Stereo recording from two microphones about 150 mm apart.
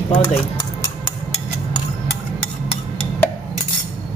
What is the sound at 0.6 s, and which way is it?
Cutlery, 25° left (ahead or behind).